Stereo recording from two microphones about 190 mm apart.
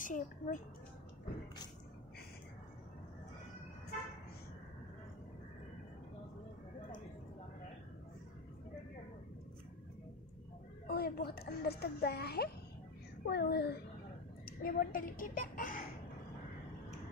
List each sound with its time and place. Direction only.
0.0 s speech: 45° left (ahead or behind)
10.9 s a child's voice: 55° left (ahead or behind)